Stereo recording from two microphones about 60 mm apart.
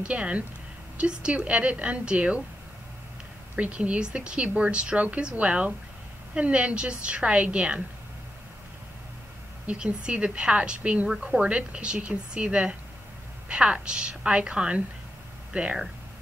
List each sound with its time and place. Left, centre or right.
0.1 s a woman's voice: centre
3.5 s a woman's voice: right
9.7 s a woman's voice: centre